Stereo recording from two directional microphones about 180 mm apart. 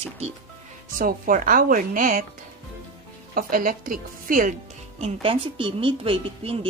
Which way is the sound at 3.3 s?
50° right (ahead or behind).